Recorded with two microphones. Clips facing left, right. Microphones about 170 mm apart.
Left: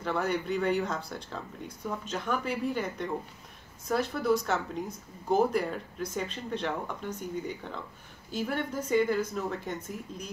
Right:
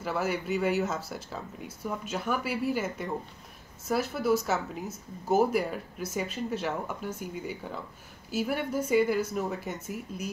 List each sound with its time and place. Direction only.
0.0 s speech: 5° right (ahead or behind)